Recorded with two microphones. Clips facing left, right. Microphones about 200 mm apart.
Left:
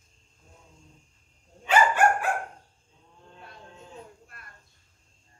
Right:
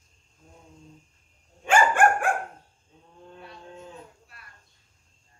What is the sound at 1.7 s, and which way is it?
Dog, 50° right (ahead or behind).